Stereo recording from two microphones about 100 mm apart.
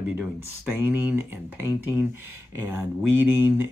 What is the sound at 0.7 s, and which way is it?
Speech, 20° right (ahead or behind).